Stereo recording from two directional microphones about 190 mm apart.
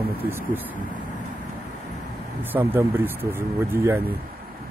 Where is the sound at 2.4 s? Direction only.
10° right (ahead or behind).